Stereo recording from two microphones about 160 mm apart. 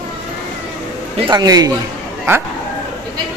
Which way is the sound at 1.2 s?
25° right (ahead or behind).